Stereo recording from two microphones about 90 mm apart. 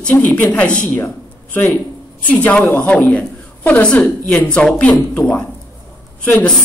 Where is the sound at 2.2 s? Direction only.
15° left (ahead or behind).